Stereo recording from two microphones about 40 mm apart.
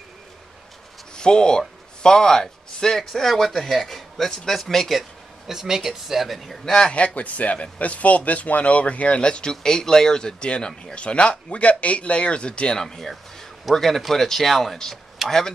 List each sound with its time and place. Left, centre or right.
1.1 s speech: centre
5.5 s speech: centre
6.6 s speech: centre
6.9 s speech: left; by 15.5 s centre